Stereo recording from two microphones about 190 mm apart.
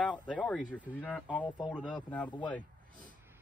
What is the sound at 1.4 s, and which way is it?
Speech, 25° left (ahead or behind).